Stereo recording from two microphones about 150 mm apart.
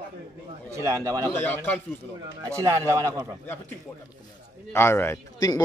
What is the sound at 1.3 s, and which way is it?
Speech, 15° left (ahead or behind).